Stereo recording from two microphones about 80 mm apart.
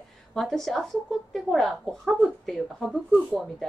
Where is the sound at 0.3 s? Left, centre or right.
Centre.